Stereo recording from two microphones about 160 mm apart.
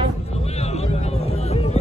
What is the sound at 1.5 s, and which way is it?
Music, 40° left (ahead or behind).